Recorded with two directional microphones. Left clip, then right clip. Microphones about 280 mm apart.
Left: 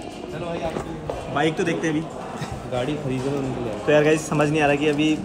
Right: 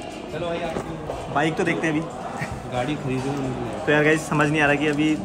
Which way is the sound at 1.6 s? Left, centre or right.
Centre.